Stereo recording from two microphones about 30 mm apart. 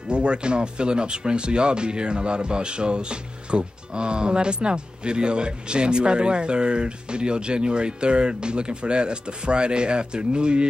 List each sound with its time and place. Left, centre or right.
0.1 s speech: right